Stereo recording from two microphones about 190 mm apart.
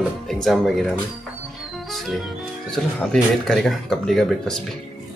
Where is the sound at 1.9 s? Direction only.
Centre (ahead or behind).